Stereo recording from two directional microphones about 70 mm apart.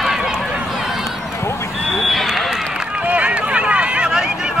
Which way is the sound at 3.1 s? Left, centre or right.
Centre.